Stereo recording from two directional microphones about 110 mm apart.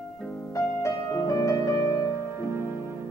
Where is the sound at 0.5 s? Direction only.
30° left (ahead or behind).